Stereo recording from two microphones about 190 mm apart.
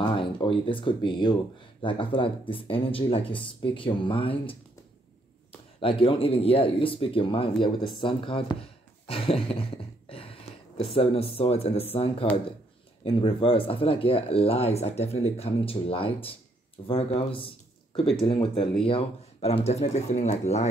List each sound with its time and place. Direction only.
0.0 s speech: 25° left (ahead or behind)
5.8 s speech: 30° left (ahead or behind)
8.0 s a sound: 25° left (ahead or behind)
11.0 s speech: 30° left (ahead or behind)